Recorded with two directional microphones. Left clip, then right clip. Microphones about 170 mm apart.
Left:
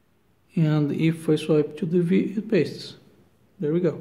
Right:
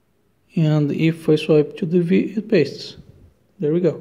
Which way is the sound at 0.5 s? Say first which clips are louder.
Right 4 dB; 20° right (ahead or behind).